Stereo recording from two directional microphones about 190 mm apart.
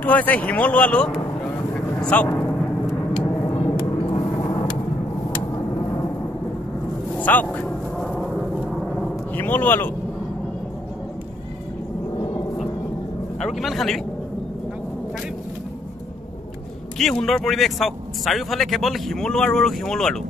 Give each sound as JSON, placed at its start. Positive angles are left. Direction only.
{"t": 0.0, "sound": "speech", "side_deg": 10}
{"t": 2.9, "sound": "vehicle", "side_deg": 25}
{"t": 7.2, "sound": "vehicle", "side_deg": 10}
{"t": 9.3, "sound": "speech", "side_deg": 10}
{"t": 13.4, "sound": "speech", "side_deg": 0}
{"t": 17.0, "sound": "speech", "side_deg": 0}